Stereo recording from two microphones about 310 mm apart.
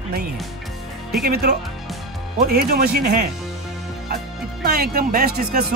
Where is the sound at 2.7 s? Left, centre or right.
Right.